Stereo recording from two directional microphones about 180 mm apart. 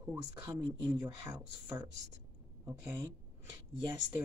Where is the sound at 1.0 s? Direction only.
25° right (ahead or behind).